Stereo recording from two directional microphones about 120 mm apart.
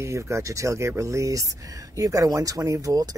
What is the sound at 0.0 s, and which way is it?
Speech, 25° right (ahead or behind).